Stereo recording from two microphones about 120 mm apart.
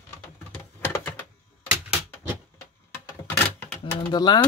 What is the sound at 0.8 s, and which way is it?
Typing, 20° left (ahead or behind).